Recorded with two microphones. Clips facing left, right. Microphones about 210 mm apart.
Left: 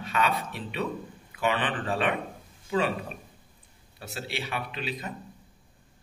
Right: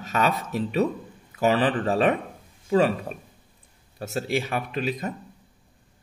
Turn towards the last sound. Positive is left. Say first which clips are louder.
# right 7 dB
turn(degrees=-45)  # may be behind; listen again after turning